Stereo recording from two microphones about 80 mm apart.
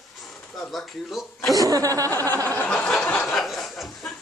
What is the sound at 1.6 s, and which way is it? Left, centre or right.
Speech, right.